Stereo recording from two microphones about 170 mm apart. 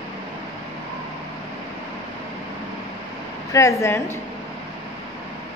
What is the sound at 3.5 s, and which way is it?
Speech, 20° left (ahead or behind).